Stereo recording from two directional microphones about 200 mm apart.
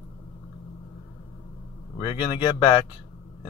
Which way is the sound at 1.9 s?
20° left (ahead or behind).